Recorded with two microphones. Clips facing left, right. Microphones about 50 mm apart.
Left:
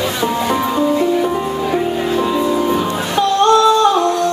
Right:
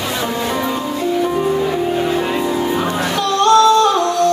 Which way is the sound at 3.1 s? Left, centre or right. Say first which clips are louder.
Left 3 dB; left.